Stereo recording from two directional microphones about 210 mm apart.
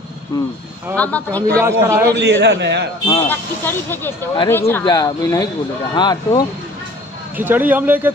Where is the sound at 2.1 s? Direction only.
55° right (ahead or behind).